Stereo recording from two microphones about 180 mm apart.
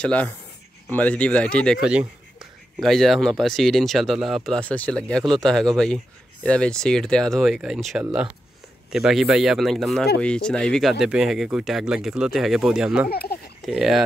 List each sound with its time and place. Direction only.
0.0 s speech: 5° left (ahead or behind)
13.1 s speech: 60° left (ahead or behind)
13.7 s speech: 5° right (ahead or behind)